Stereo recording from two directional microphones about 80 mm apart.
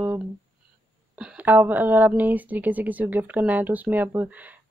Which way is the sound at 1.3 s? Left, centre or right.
Right.